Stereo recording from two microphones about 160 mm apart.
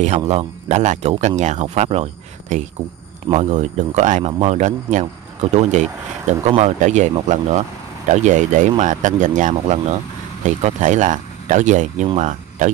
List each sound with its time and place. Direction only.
0.3 s speech: 45° right (ahead or behind)